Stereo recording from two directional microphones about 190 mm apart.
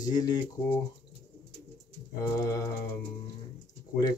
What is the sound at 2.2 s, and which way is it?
Mantra, 15° left (ahead or behind).